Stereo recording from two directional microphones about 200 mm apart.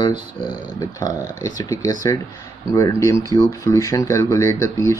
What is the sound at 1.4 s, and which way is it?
Speech, 15° left (ahead or behind).